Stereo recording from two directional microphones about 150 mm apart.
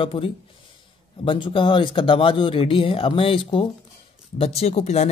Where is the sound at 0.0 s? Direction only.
35° left (ahead or behind).